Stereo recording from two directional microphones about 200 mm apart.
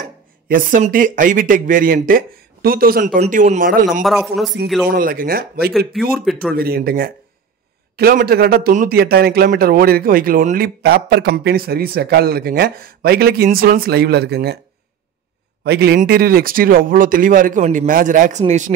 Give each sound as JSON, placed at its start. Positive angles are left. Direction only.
{"t": 0.0, "sound": "a man's voice", "side_deg": -45}
{"t": 4.0, "sound": "a man's voice", "side_deg": 0}
{"t": 4.8, "sound": "a man's voice", "side_deg": -45}
{"t": 5.7, "sound": "a man's voice", "side_deg": 0}
{"t": 6.5, "sound": "a man's voice", "side_deg": -50}
{"t": 15.6, "sound": "a man's voice", "side_deg": -55}